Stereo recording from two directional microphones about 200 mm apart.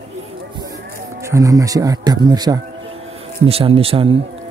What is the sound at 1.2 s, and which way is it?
Speech, 15° right (ahead or behind).